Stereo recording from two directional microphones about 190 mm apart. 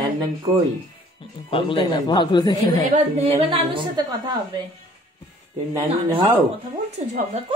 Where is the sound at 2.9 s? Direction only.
35° right (ahead or behind).